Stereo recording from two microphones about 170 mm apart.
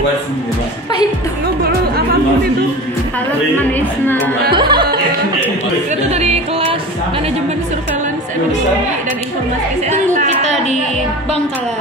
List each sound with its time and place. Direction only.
4.6 s music: 25° right (ahead or behind)
6.0 s yodeling: 40° right (ahead or behind)
9.8 s a woman's voice: 45° right (ahead or behind)